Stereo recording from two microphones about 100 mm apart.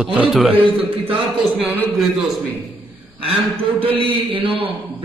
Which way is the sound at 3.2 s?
65° right (ahead or behind).